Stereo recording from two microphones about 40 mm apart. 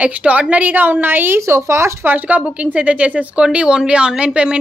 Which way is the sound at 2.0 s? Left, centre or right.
Right.